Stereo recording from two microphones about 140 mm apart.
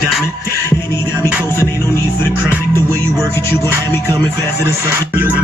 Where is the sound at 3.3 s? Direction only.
15° left (ahead or behind).